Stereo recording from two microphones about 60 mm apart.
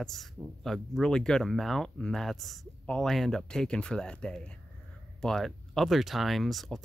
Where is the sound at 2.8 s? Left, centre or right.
Centre.